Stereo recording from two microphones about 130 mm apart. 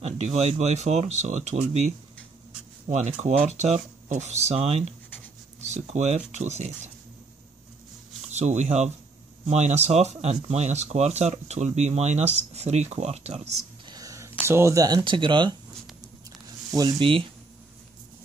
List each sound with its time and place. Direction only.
0.0 s speech: 60° right (ahead or behind)
8.3 s speech: 60° right (ahead or behind)
13.8 s a sound: 30° right (ahead or behind)
14.4 s speech: 20° right (ahead or behind); by 15.5 s 35° right (ahead or behind)
17.0 s speech: 40° right (ahead or behind)